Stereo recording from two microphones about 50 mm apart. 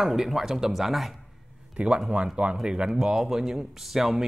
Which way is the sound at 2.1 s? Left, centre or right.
Centre.